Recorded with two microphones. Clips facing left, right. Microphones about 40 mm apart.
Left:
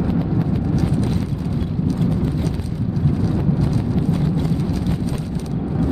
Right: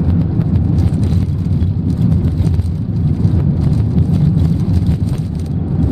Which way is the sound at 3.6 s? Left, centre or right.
Centre.